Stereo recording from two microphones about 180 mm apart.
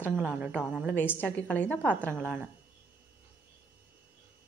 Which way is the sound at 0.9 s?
10° left (ahead or behind).